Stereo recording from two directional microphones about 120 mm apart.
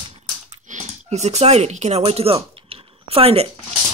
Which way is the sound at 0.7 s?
80° right.